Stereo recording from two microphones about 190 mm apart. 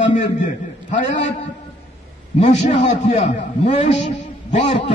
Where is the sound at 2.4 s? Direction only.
40° left (ahead or behind).